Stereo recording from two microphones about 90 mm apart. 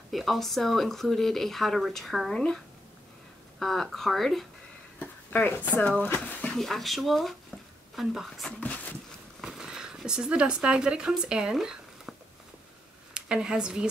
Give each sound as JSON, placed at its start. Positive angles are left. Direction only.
{"t": 0.1, "sound": "speech", "side_deg": 0}
{"t": 4.9, "sound": "a sound", "side_deg": 20}
{"t": 5.8, "sound": "speech", "side_deg": 15}
{"t": 6.5, "sound": "speech", "side_deg": 0}
{"t": 8.5, "sound": "speech", "side_deg": 15}
{"t": 9.4, "sound": "zipper", "side_deg": -5}
{"t": 13.1, "sound": "speech", "side_deg": -10}